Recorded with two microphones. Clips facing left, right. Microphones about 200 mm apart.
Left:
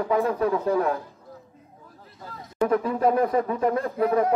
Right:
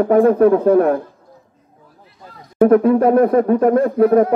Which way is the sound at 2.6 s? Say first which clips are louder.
Right 10 dB; 60° right (ahead or behind).